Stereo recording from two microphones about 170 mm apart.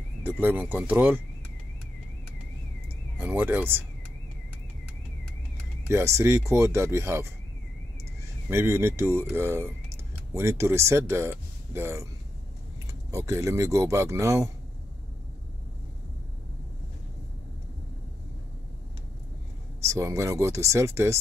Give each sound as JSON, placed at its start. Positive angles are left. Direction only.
{"t": 0.2, "sound": "speech", "side_deg": -10}
{"t": 3.2, "sound": "speech", "side_deg": -10}
{"t": 5.9, "sound": "speech", "side_deg": -15}
{"t": 8.5, "sound": "speech", "side_deg": -15}
{"t": 13.1, "sound": "speech", "side_deg": -20}
{"t": 19.9, "sound": "speech", "side_deg": -15}